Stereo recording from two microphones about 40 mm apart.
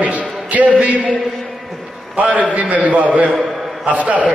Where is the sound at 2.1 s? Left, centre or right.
Right.